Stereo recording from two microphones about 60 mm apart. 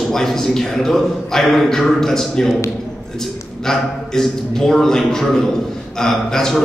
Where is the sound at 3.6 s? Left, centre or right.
Centre.